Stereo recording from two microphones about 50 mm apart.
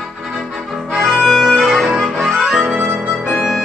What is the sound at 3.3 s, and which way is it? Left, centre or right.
Music, centre.